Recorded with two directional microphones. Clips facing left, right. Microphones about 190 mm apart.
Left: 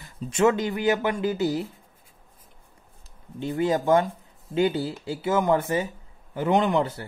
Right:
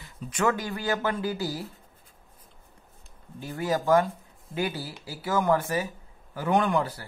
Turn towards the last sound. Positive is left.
turn(degrees=25)  # may be behind; listen again after turning